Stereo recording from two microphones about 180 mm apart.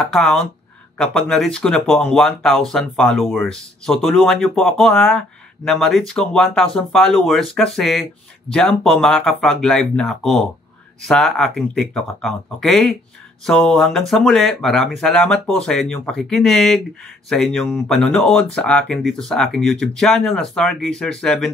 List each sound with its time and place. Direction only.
0.0 s speech: centre (ahead or behind)